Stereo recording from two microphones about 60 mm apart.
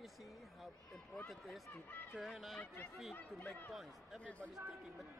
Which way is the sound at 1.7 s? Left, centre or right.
Left.